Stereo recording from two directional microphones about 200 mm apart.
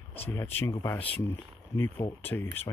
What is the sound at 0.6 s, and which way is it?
Speech, 15° left (ahead or behind).